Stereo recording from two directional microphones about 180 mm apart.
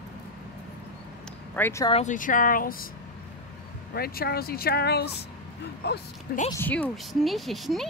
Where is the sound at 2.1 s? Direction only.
50° left (ahead or behind).